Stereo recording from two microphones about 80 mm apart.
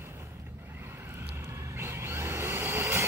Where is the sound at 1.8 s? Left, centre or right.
Right.